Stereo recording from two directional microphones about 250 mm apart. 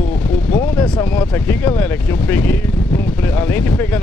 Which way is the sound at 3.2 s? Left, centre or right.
Centre.